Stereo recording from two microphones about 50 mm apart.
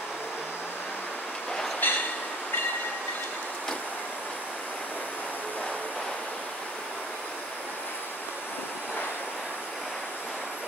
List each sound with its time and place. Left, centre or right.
1.8 s train: left